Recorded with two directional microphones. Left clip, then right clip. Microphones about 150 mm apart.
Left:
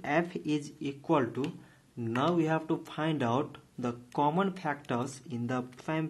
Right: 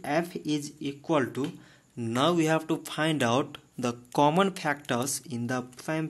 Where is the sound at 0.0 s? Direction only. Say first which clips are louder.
Right 1 dB; 20° right (ahead or behind).